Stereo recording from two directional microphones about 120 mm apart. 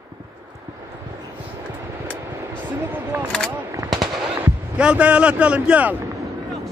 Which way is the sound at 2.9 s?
15° right (ahead or behind).